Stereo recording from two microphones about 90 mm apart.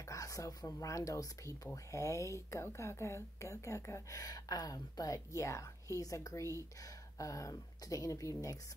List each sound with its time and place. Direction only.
0.0 s speech: 40° left (ahead or behind)